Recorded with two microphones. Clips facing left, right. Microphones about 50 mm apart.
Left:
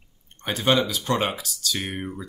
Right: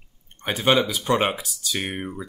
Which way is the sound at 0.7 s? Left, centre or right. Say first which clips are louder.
Right 2 dB; centre.